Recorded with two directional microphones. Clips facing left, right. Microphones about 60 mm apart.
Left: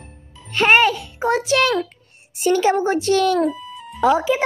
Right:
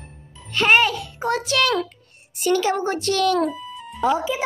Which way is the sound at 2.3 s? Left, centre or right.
Left.